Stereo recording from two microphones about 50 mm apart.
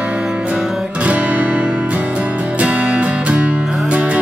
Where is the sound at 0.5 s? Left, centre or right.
Right.